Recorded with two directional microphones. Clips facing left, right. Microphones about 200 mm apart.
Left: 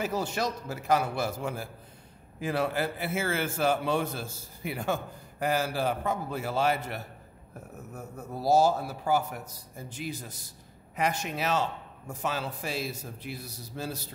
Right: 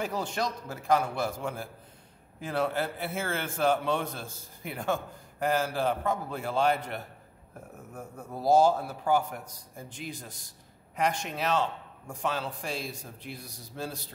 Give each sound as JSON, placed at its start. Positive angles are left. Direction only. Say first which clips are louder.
{"t": 0.0, "sound": "a man's voice", "louder": "left 1 dB", "side_deg": 5}